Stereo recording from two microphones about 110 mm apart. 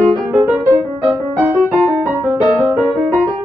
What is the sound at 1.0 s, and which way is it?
Music, 20° right (ahead or behind).